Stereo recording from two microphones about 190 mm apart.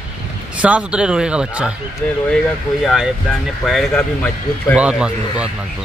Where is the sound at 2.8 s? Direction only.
Centre (ahead or behind).